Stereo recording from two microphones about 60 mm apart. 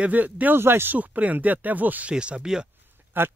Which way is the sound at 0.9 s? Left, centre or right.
Right.